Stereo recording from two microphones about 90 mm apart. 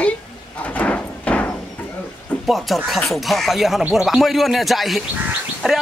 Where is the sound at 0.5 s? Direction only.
15° left (ahead or behind).